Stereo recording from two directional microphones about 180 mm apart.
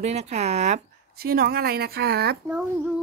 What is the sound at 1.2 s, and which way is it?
Speech, 55° right (ahead or behind).